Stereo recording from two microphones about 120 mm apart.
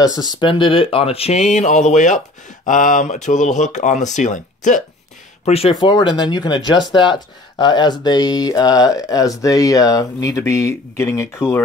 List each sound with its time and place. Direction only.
0.0 s speech: 30° left (ahead or behind); by 4.8 s 90° left
5.4 s speech: 55° left (ahead or behind)
5.8 s speech: 40° left (ahead or behind); by 11.6 s 20° left (ahead or behind)